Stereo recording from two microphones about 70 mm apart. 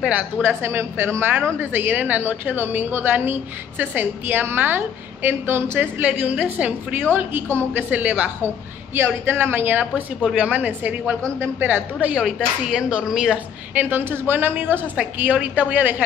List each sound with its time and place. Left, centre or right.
0.1 s a woman's voice: right
7.9 s a woman's voice: right
8.9 s a woman's voice: right
12.2 s speech: centre
13.7 s a woman's voice: right